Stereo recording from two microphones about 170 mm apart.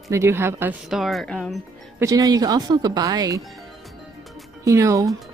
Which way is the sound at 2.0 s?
20° right (ahead or behind).